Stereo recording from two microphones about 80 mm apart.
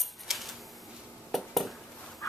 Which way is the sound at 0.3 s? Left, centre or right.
Centre.